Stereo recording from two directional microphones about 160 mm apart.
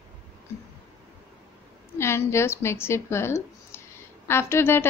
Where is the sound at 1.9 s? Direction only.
15° left (ahead or behind).